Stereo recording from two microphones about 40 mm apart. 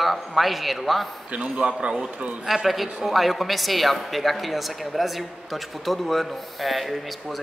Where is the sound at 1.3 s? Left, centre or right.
Right.